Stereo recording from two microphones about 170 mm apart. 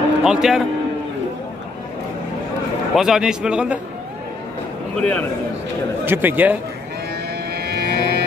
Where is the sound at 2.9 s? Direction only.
5° right (ahead or behind).